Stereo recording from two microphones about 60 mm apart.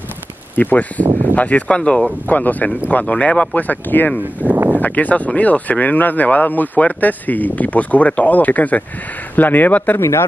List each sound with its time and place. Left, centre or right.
0.6 s speech: left
2.2 s speech: left
4.2 s speech: right
4.7 s speech: left
9.9 s speech: left